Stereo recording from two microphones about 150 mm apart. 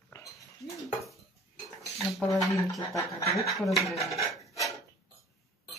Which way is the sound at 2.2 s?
20° left (ahead or behind).